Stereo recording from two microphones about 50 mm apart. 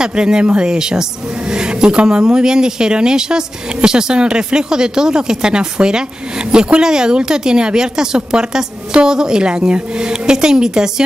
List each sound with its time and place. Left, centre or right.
0.0 s speech: centre